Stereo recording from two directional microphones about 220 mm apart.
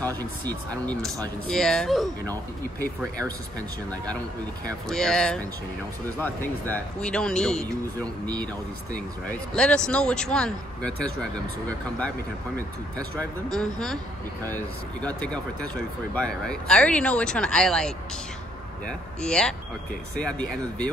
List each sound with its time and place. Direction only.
0.5 s speech: 5° left (ahead or behind)
4.8 s speech: centre (ahead or behind)
9.6 s speech: 5° left (ahead or behind)
13.5 s speech: centre (ahead or behind)
19.2 s speech: 5° left (ahead or behind)